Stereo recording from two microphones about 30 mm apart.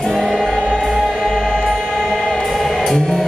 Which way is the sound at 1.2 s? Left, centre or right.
Centre.